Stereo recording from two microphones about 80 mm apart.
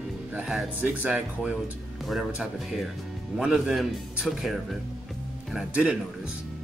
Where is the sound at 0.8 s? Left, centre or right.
Centre.